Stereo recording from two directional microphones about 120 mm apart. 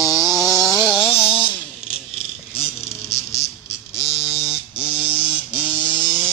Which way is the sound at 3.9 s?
55° left (ahead or behind).